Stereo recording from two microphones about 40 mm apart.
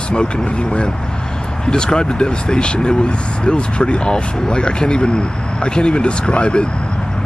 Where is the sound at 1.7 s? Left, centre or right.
Centre.